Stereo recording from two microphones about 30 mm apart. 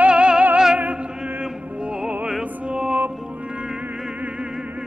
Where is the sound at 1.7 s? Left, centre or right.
Right.